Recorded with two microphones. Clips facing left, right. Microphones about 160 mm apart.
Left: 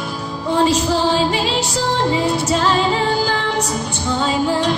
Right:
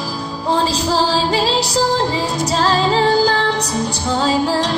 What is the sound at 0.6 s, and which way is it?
Music, 35° right (ahead or behind).